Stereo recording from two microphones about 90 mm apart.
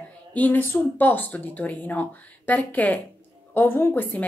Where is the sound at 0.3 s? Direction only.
20° left (ahead or behind).